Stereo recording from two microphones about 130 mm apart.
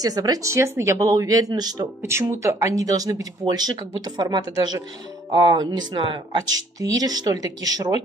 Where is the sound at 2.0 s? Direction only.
20° right (ahead or behind).